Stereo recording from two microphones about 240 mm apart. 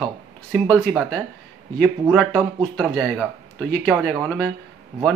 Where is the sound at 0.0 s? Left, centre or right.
Centre.